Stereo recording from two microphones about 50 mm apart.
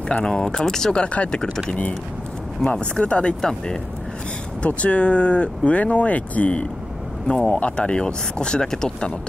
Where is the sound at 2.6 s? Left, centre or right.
Left.